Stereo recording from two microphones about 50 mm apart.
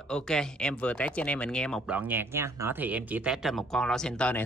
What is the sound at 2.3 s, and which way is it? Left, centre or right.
Speech, right.